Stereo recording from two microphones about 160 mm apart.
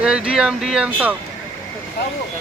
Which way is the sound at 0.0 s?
5° right (ahead or behind).